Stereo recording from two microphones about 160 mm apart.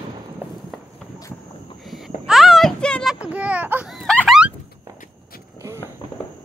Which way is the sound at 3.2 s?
10° right (ahead or behind).